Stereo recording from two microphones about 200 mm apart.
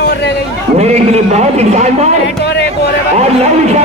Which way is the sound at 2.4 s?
55° left (ahead or behind).